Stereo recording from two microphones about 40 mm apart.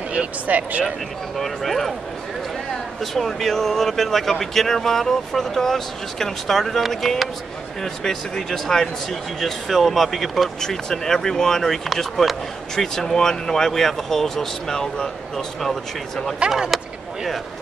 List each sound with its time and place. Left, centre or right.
0.1 s speech: right
1.4 s speech: centre
3.0 s speech: centre
10.6 s speech: centre
16.4 s speech: centre
16.7 s a sound: centre